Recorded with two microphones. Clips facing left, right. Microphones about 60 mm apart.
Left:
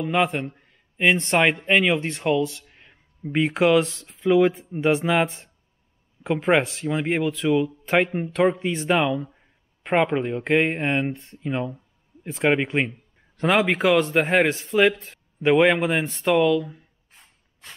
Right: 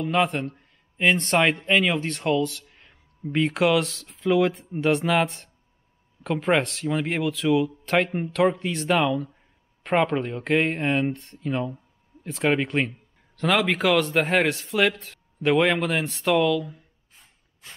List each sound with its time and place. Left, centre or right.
0.0 s speech: centre
0.6 s a sound: centre
1.5 s speech: centre